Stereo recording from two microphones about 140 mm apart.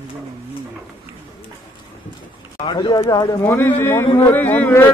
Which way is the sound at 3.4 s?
15° left (ahead or behind).